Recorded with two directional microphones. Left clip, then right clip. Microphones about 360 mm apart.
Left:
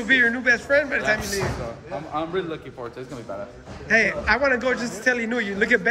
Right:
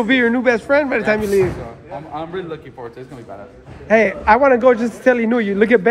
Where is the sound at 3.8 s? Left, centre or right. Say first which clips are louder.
Right 7 dB; centre.